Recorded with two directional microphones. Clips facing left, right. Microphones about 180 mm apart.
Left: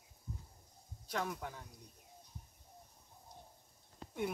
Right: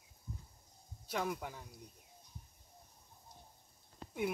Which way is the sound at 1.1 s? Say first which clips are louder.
Right 2 dB; 5° right (ahead or behind).